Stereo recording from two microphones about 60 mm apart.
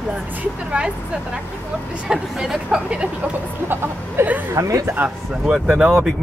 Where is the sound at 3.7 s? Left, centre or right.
Right.